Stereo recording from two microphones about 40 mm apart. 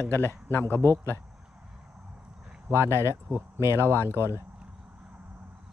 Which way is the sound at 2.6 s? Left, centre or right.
Right.